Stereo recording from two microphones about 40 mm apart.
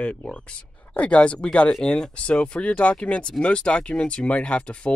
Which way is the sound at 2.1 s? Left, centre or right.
Left.